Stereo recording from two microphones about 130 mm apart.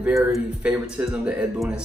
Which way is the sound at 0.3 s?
10° right (ahead or behind).